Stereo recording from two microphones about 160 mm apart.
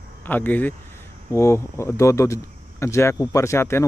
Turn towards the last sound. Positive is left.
turn(degrees=15)  # may be behind; listen again after turning